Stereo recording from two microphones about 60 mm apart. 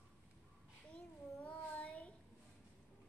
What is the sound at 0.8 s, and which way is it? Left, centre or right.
Child singing, left.